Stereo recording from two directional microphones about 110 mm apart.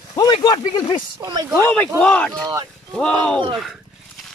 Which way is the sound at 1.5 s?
15° left (ahead or behind).